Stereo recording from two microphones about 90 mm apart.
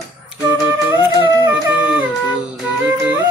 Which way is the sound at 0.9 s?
35° right (ahead or behind).